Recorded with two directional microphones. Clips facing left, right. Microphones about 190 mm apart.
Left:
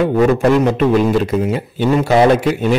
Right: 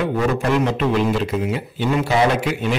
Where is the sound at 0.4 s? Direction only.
45° left (ahead or behind).